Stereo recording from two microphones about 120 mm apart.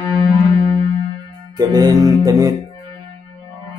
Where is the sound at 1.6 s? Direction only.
35° right (ahead or behind).